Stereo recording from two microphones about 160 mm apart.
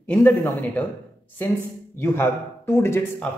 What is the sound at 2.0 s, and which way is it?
Speech, 15° left (ahead or behind).